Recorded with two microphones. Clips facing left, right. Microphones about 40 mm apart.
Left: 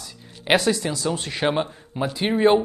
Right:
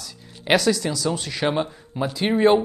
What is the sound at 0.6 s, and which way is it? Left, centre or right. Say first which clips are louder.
Speech: right 1 dB; left.